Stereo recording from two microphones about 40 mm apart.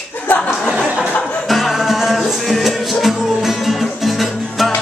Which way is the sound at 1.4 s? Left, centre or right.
Centre.